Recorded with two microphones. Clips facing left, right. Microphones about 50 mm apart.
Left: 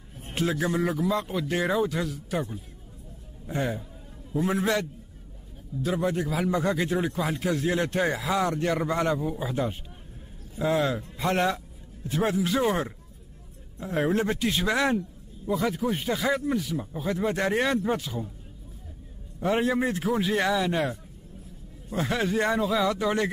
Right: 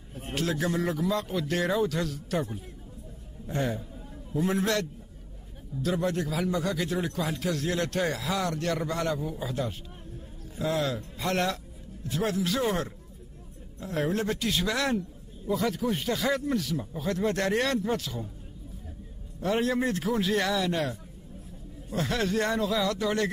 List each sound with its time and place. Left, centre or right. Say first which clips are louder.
0.3 s a man's voice: left 2 dB; centre
6.5 s a man's voice: left 3 dB; left
15.0 s speech: left 2 dB; centre
19.4 s speech: left 2 dB; centre